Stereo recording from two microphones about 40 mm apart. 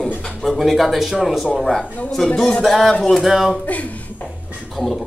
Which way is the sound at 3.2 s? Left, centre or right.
Centre.